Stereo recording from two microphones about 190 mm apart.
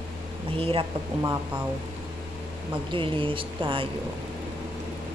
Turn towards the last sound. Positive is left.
turn(degrees=-30)  # may be behind; listen again after turning